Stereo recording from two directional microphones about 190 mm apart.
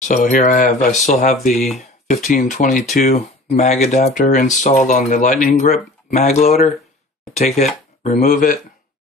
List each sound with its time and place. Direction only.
0.1 s speech: 40° left (ahead or behind)
1.5 s speech: centre (ahead or behind)
1.8 s speech: 40° left (ahead or behind)